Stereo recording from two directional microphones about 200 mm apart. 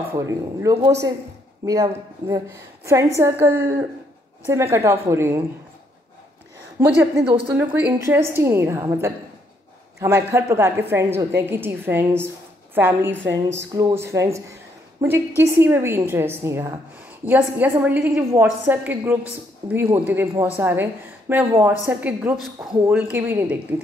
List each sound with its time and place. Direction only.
0.3 s a woman's voice: 15° right (ahead or behind)
2.2 s a woman's voice: 15° right (ahead or behind)
6.8 s a woman's voice: 10° right (ahead or behind)
13.3 s speech: 60° right (ahead or behind)
13.7 s a woman's voice: 15° right (ahead or behind)